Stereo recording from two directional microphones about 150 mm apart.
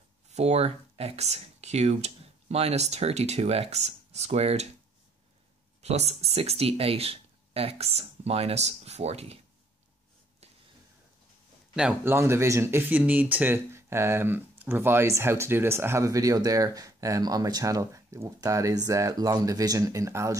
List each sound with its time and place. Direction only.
0.3 s speech: 45° right (ahead or behind)
5.8 s speech: 45° right (ahead or behind)
11.7 s speech: 10° right (ahead or behind)